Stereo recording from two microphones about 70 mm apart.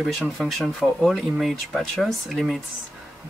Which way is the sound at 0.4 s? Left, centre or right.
Centre.